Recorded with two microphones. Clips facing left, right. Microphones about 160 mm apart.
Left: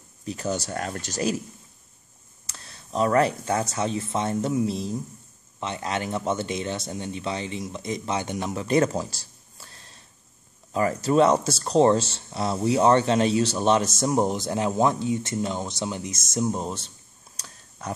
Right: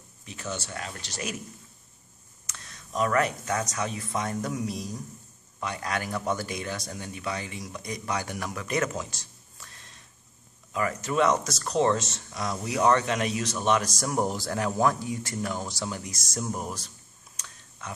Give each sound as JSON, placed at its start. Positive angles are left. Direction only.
{"t": 0.2, "sound": "speech", "side_deg": 40}
{"t": 2.4, "sound": "speech", "side_deg": 30}
{"t": 17.4, "sound": "a sound", "side_deg": 40}